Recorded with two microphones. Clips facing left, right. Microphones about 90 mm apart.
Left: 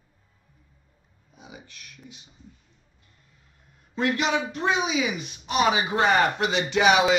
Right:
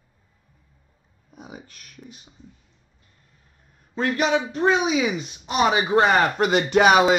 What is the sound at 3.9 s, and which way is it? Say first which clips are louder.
Speech: right 3 dB; 35° right (ahead or behind).